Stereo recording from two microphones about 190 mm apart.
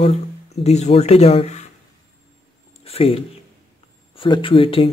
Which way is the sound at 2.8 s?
30° left (ahead or behind).